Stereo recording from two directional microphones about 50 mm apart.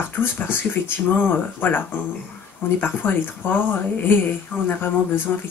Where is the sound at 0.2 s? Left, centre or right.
Left.